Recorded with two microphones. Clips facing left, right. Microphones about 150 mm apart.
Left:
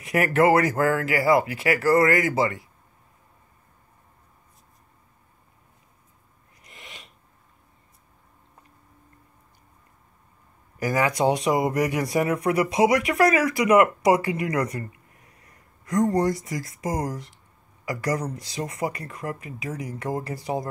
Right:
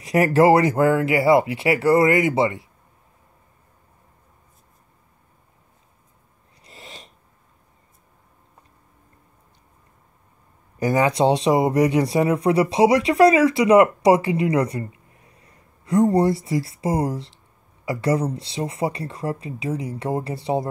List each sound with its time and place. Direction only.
0.0 s speech: 30° right (ahead or behind)
6.6 s a sound: 35° right (ahead or behind)
10.8 s speech: 25° right (ahead or behind)